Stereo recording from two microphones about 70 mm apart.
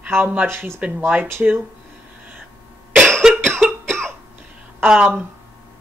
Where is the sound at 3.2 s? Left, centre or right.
Centre.